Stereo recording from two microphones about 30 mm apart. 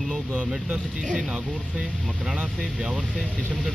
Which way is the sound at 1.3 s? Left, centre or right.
Right.